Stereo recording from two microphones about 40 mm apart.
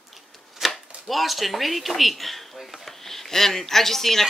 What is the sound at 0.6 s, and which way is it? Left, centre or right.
Chopping, centre.